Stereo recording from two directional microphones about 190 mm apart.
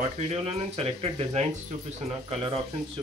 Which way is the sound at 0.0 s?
30° right (ahead or behind).